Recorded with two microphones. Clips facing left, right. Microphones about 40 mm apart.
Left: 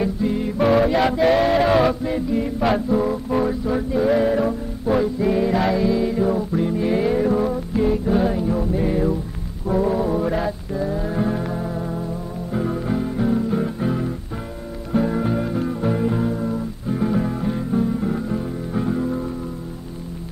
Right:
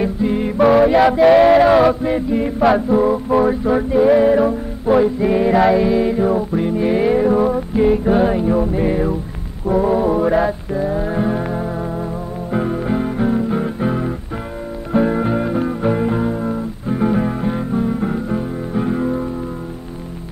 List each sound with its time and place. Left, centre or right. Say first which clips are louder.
0.0 s music: right 4 dB; right
0.7 s music: right 6 dB; centre
1.2 s a sound: right 8 dB; right
1.9 s music: right 5 dB; right